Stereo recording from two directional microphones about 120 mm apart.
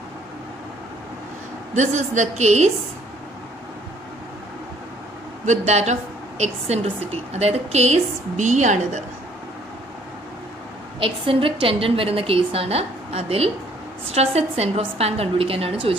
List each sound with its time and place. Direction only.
1.8 s a woman's voice: 80° right
5.4 s a woman's voice: 75° right (ahead or behind)
11.0 s a woman's voice: 50° right (ahead or behind)